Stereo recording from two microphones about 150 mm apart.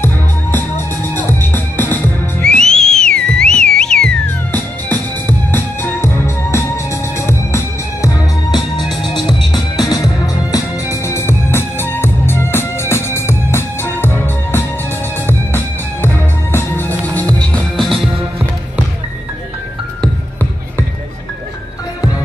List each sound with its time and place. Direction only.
0.0 s music: 15° left (ahead or behind)